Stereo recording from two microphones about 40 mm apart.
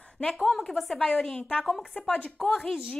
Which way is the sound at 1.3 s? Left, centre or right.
Left.